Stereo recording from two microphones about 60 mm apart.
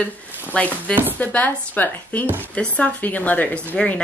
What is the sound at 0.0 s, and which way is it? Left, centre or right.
Speech, left.